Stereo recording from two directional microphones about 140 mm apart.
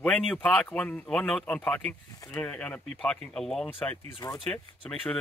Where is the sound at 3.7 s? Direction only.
15° left (ahead or behind).